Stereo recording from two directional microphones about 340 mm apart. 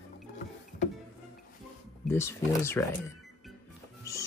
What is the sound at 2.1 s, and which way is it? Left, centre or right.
Speech, centre.